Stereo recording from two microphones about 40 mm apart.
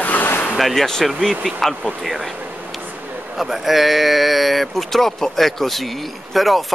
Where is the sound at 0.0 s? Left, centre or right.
Left.